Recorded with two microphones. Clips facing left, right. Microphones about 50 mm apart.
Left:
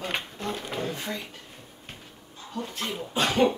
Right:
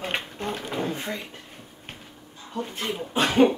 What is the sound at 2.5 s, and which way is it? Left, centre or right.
A woman's voice, right.